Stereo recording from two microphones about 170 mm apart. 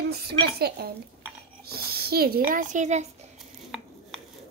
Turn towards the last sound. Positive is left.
turn(degrees=-45)  # may be behind; listen again after turning